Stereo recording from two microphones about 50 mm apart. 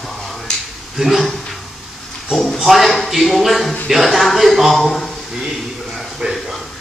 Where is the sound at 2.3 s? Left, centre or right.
Centre.